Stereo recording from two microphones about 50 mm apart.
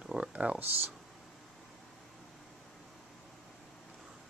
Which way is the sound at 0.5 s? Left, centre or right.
Right.